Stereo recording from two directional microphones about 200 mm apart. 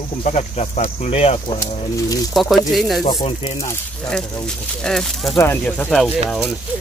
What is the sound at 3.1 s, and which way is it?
Speech, 20° left (ahead or behind).